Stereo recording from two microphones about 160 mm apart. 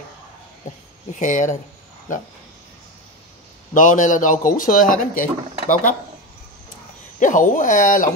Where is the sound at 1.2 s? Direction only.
50° left (ahead or behind).